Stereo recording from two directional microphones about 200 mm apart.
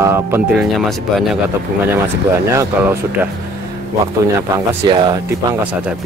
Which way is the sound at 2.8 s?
10° right (ahead or behind).